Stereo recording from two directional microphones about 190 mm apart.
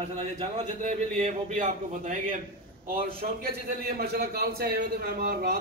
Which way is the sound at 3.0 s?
55° right (ahead or behind).